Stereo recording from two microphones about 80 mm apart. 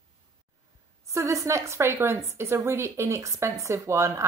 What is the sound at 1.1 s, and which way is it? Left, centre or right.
A woman's voice, right.